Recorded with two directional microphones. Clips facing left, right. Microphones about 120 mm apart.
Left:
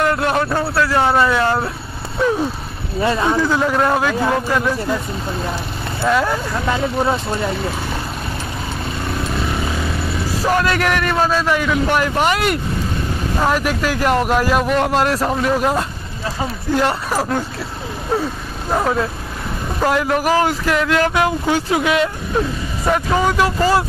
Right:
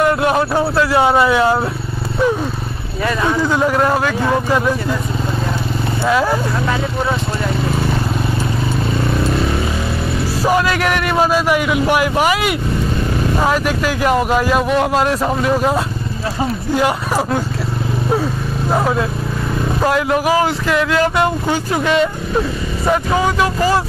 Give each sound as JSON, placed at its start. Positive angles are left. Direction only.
{"t": 0.0, "sound": "a sound", "side_deg": -10}
{"t": 0.7, "sound": "a man's voice", "side_deg": -15}
{"t": 3.0, "sound": "speech", "side_deg": 25}
{"t": 3.3, "sound": "a man's voice", "side_deg": -10}
{"t": 6.0, "sound": "speech", "side_deg": -5}
{"t": 10.4, "sound": "a man's voice", "side_deg": -5}
{"t": 18.7, "sound": "speech", "side_deg": -5}